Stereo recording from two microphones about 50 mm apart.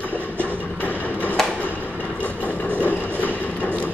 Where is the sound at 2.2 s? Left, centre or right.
Right.